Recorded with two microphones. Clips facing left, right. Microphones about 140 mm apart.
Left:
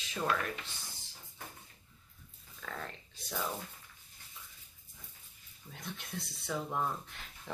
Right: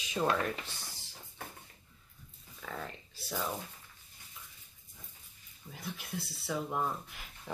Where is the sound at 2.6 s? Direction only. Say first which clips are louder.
Right 1 dB; 5° right (ahead or behind).